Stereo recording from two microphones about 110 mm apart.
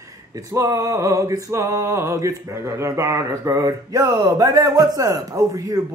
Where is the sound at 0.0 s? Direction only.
30° right (ahead or behind).